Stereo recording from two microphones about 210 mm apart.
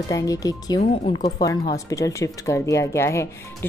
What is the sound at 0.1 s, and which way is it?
Speech, 15° left (ahead or behind).